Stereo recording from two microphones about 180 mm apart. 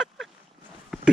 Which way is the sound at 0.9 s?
5° left (ahead or behind).